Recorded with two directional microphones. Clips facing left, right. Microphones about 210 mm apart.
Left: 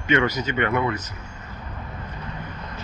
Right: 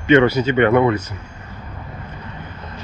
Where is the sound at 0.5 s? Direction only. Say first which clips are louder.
Right 10 dB; 25° right (ahead or behind).